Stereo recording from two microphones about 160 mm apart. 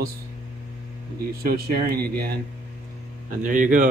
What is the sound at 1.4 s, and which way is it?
Speech, 75° right (ahead or behind).